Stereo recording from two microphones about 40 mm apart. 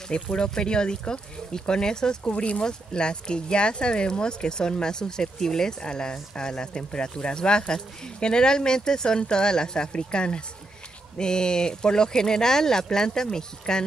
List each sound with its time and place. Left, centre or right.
0.1 s speech: left